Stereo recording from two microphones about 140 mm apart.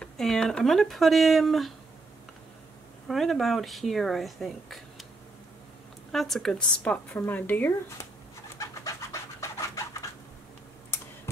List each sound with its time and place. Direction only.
0.0 s speech: 5° left (ahead or behind)
3.1 s speech: centre (ahead or behind)
6.1 s speech: centre (ahead or behind)
8.5 s pant: 20° left (ahead or behind)